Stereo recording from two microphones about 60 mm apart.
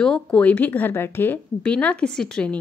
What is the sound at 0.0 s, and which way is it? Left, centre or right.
Speech, centre.